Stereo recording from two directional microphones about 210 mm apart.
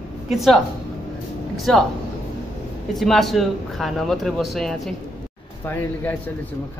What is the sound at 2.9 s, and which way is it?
Speech, centre (ahead or behind).